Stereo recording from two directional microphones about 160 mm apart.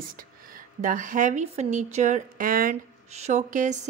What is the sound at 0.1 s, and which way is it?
A woman's voice, 60° right (ahead or behind).